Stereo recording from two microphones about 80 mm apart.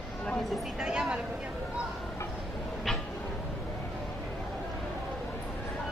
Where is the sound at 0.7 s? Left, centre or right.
Centre.